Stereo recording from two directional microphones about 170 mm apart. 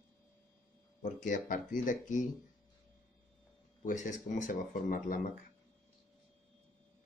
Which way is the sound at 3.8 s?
45° left (ahead or behind).